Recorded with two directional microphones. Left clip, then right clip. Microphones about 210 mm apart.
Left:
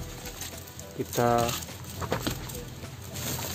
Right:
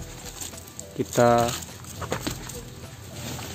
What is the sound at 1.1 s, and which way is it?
Speech, 50° right (ahead or behind).